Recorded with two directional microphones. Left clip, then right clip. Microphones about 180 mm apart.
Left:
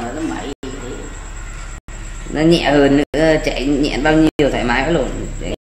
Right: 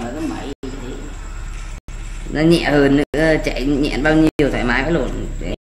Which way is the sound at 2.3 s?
20° right (ahead or behind).